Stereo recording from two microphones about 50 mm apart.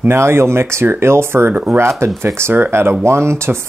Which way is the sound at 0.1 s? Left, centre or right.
Right.